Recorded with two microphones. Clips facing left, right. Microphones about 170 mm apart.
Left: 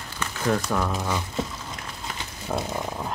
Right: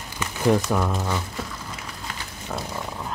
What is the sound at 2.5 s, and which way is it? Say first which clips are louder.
Speech: left 3 dB; 20° left (ahead or behind).